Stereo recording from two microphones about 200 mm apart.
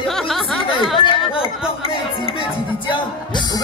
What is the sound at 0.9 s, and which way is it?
Chatter, 25° left (ahead or behind).